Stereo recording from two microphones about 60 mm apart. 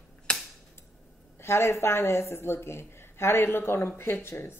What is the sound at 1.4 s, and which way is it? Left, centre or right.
Speech, left.